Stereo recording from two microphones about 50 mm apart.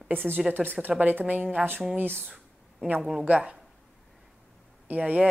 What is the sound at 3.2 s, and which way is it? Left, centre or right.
Speech, right.